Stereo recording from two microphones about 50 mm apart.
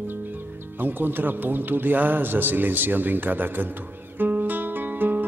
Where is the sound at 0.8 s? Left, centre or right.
Right.